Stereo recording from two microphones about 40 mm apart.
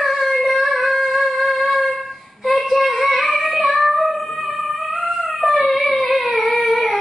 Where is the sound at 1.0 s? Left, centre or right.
Centre.